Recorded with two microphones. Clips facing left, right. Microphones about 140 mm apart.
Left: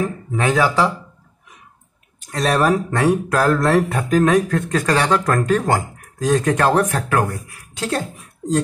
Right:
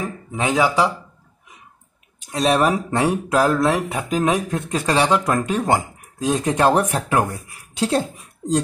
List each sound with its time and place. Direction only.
0.3 s speech: 15° right (ahead or behind)
2.3 s speech: 15° right (ahead or behind)